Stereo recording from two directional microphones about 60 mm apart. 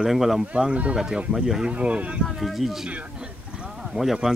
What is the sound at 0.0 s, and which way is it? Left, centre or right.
Speech, centre.